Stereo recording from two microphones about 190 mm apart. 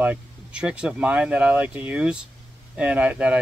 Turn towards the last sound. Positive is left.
turn(degrees=-5)  # may be behind; listen again after turning